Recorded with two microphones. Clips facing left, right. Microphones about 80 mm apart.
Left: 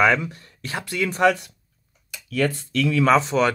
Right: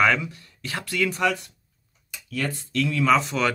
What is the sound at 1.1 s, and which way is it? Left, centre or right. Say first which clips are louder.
Speech: left 8 dB; left.